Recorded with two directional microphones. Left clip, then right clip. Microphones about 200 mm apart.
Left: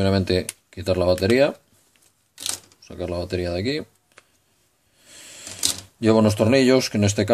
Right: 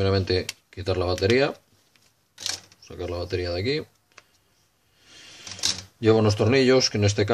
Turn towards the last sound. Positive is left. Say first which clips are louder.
# even
turn(degrees=35)  # may be behind; listen again after turning